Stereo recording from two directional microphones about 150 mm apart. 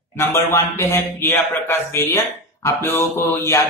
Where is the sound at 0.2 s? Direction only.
15° left (ahead or behind).